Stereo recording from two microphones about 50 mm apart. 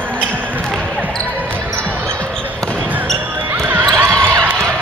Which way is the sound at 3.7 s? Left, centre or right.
Right.